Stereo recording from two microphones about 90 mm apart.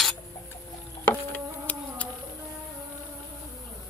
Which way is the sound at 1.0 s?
15° left (ahead or behind).